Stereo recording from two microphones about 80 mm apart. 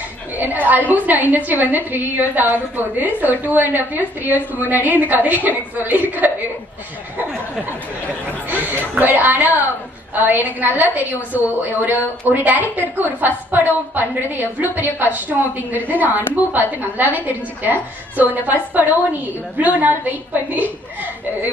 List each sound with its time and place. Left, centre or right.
0.4 s a woman's voice: right
8.5 s a woman's voice: right